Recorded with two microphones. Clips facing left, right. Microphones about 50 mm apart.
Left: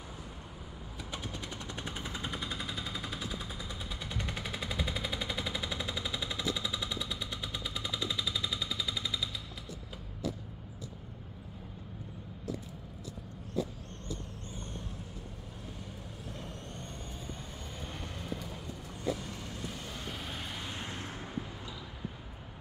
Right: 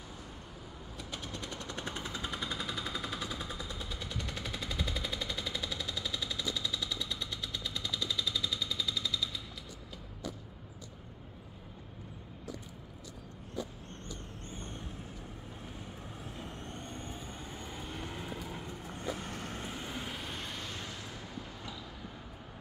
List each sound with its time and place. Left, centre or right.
0.9 s machine gun: centre
2.4 s a sound: centre
3.2 s machine gun: centre
17.7 s vehicle: centre
18.0 s vehicle: centre
18.9 s vehicle: right
19.6 s vehicle: right
20.1 s vehicle: centre
20.5 s a sound: centre
20.8 s a sound: left